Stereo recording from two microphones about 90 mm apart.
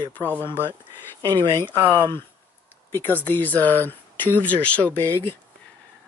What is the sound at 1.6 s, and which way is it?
Speech, 25° left (ahead or behind).